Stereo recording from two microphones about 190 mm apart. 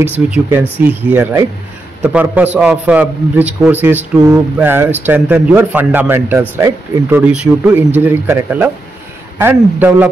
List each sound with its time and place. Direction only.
0.0 s a man's voice: 10° right (ahead or behind)